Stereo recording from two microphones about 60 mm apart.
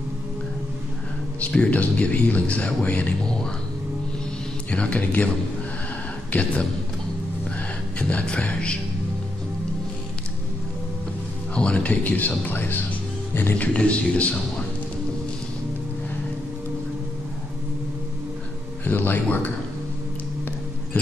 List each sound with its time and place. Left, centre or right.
1.4 s speech: left
4.6 s speech: left
6.3 s speech: left
8.0 s music: centre
11.5 s speech: centre; by 13.6 s left
13.6 s speech: left
18.9 s speech: left